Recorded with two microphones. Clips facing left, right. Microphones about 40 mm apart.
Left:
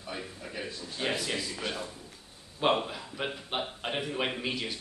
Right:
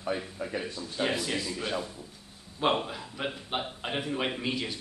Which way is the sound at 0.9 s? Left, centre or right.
Centre.